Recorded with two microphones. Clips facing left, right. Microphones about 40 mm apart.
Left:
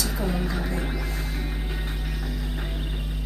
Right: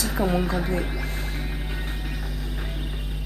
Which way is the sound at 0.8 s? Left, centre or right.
Centre.